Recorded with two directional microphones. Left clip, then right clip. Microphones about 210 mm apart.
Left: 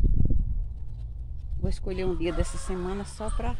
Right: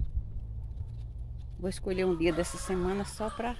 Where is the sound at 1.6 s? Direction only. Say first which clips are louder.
Right 1 dB; 15° right (ahead or behind).